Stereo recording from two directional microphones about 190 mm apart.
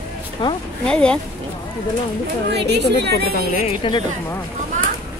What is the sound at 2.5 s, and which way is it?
Speech, 60° right (ahead or behind).